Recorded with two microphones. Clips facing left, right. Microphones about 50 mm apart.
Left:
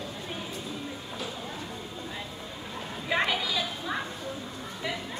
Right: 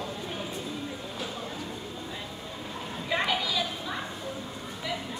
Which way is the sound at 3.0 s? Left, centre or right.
Centre.